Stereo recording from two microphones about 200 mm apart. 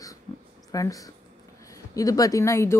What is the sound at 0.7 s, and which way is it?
Speech, 15° left (ahead or behind).